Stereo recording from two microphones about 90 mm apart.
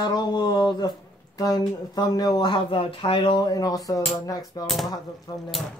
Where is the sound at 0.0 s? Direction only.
50° left (ahead or behind); by 3.3 s 90° left.